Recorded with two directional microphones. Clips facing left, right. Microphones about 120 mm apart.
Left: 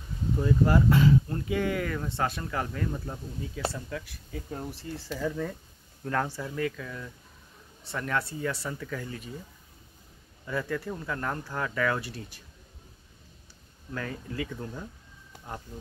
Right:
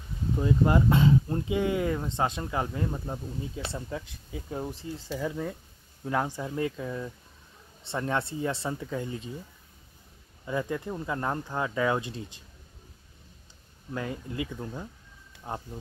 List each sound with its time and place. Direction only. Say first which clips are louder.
0.4 s speech: even; 20° right (ahead or behind)
10.4 s speech: right 1 dB; 20° right (ahead or behind)
13.9 s speech: right 1 dB; 20° right (ahead or behind)